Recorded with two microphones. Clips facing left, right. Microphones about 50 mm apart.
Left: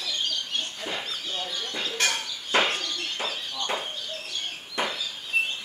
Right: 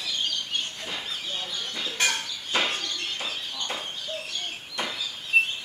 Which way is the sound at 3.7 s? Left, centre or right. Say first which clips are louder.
Left 5 dB; centre.